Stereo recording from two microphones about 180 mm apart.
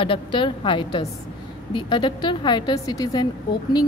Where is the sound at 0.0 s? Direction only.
30° left (ahead or behind).